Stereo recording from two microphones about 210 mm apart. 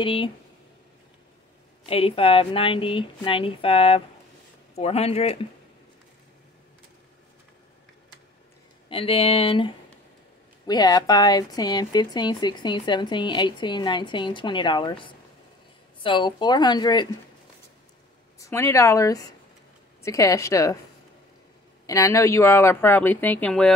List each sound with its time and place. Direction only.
0.0 s speech: 25° left (ahead or behind)
1.9 s speech: 25° left (ahead or behind)
8.8 s speech: 25° left (ahead or behind)
10.7 s speech: 20° left (ahead or behind)
18.4 s speech: 15° left (ahead or behind)
21.8 s speech: 15° left (ahead or behind)